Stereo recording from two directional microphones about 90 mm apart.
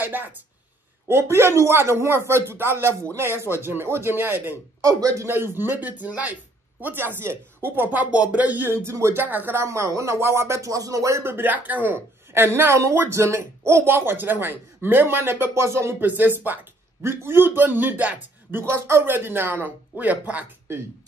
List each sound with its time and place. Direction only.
0.0 s speech: 20° right (ahead or behind)
4.8 s a man's voice: 35° right (ahead or behind)
5.6 s speech: 20° right (ahead or behind)
8.8 s speech: 30° right (ahead or behind)
9.7 s speech: 35° right (ahead or behind); by 18.6 s 20° right (ahead or behind)
18.6 s speech: 30° right (ahead or behind)